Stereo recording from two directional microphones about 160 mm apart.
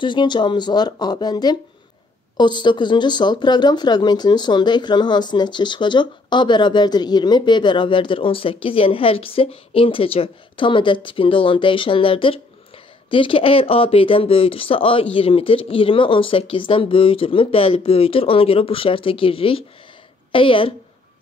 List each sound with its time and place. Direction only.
0.0 s a woman's voice: 30° left (ahead or behind)